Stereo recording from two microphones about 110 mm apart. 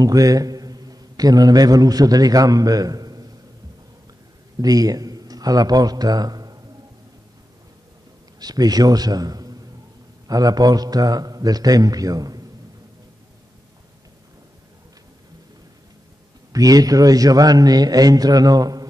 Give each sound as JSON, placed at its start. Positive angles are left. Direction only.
{"t": 0.0, "sound": "a man's voice", "side_deg": -35}
{"t": 4.6, "sound": "speech", "side_deg": -35}
{"t": 8.4, "sound": "a man's voice", "side_deg": -35}
{"t": 16.5, "sound": "a man's voice", "side_deg": -35}